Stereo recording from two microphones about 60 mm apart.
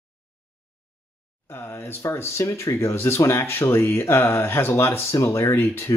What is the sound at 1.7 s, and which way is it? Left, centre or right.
Speech, left.